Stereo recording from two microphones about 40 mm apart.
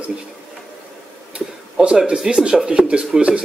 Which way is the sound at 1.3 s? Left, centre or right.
Right.